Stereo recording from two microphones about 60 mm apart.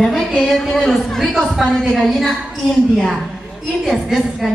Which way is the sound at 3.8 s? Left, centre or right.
Centre.